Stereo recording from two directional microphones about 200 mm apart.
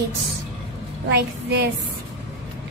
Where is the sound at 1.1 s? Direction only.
55° right (ahead or behind).